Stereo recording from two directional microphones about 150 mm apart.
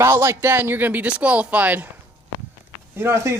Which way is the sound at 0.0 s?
15° right (ahead or behind).